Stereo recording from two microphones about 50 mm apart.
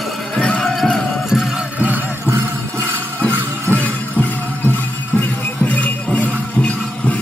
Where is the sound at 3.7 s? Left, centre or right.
Left.